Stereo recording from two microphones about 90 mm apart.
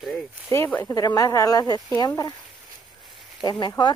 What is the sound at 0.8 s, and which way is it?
Speech, 40° left (ahead or behind).